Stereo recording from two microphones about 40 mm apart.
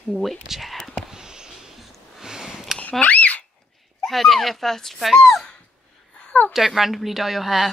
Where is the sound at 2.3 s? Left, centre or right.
Centre.